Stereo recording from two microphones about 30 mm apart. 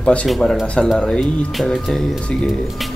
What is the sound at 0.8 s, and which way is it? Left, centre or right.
Speech, left.